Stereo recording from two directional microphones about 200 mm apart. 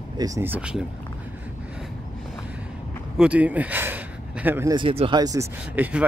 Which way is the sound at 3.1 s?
5° right (ahead or behind).